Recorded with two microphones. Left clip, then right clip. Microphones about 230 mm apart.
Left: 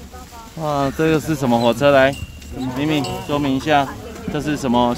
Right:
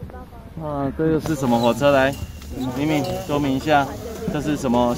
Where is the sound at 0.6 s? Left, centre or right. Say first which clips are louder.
Left 5 dB; left.